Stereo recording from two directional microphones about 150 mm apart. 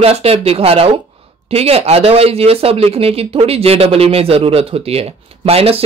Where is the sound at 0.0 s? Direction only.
40° right (ahead or behind).